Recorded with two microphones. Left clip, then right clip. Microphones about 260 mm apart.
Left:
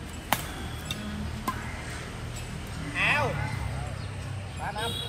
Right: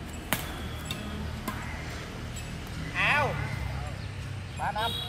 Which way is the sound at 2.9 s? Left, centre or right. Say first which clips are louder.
Even; centre.